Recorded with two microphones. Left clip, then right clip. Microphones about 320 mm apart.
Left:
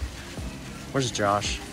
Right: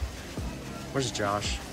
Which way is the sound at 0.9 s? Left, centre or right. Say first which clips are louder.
Left 5 dB; centre.